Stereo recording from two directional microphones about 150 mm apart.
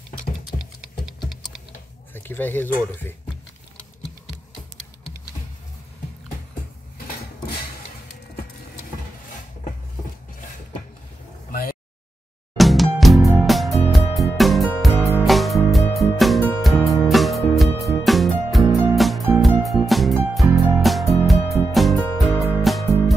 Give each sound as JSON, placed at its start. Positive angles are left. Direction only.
{"t": 0.5, "sound": "clock", "side_deg": 65}
{"t": 2.1, "sound": "speech", "side_deg": 15}
{"t": 12.5, "sound": "music", "side_deg": 0}